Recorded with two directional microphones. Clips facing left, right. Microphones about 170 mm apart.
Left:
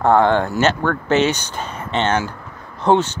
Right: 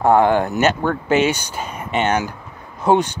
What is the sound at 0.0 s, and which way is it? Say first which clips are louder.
Speech: even; 10° right (ahead or behind).